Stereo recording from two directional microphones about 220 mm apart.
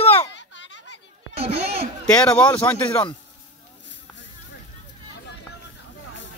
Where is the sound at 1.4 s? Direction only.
25° right (ahead or behind).